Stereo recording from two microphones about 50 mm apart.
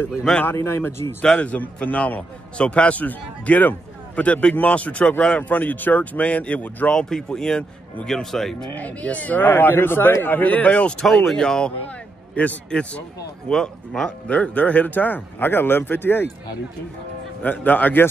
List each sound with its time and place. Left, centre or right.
0.5 s a man's voice: left
1.4 s speech: left
2.5 s a man's voice: left
6.9 s speech: centre
8.7 s speech: left
11.3 s speech: centre
12.4 s a man's voice: left
13.5 s speech: centre
14.3 s speech: left
17.4 s speech: left